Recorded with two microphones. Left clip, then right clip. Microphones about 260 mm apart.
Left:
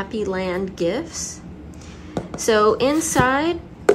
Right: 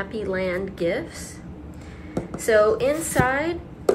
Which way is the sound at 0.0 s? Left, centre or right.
Centre.